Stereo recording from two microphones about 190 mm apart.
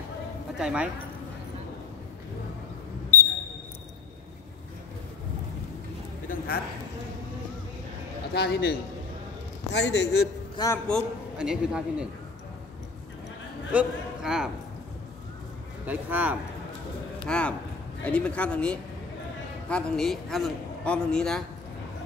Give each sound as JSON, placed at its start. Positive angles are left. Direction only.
{"t": 0.6, "sound": "a man's voice", "side_deg": -5}
{"t": 3.1, "sound": "a sound", "side_deg": 10}
{"t": 6.2, "sound": "a sound", "side_deg": 55}
{"t": 8.3, "sound": "a man's voice", "side_deg": 60}
{"t": 10.6, "sound": "a man's voice", "side_deg": 20}
{"t": 11.3, "sound": "a man's voice", "side_deg": -5}
{"t": 13.7, "sound": "a man's voice", "side_deg": -5}
{"t": 15.8, "sound": "speech", "side_deg": -10}
{"t": 17.3, "sound": "a man's voice", "side_deg": 5}